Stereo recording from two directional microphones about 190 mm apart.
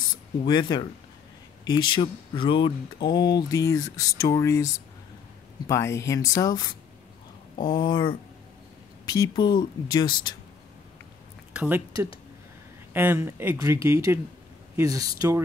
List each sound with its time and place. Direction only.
0.5 s speech: 25° left (ahead or behind)
7.7 s speech: 25° left (ahead or behind)
11.5 s speech: 10° right (ahead or behind)